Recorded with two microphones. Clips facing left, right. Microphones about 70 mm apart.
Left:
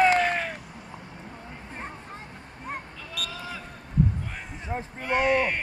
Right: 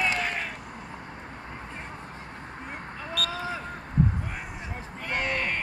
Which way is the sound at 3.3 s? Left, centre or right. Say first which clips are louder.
Right 5 dB; right.